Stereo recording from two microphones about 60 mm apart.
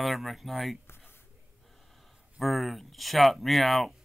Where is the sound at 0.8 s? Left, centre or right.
Left.